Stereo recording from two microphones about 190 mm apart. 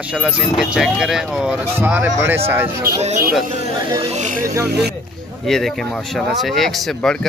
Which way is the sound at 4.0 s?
35° right (ahead or behind).